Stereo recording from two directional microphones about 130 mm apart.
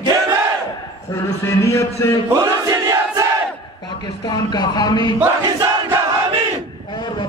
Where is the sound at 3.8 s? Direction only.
35° left (ahead or behind).